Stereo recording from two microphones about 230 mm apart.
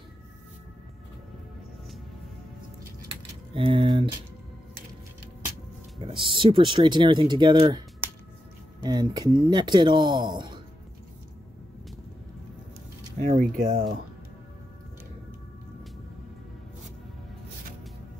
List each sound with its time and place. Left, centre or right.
3.1 s keys jangling: right
5.9 s speech: right
8.8 s speech: centre
13.2 s speech: right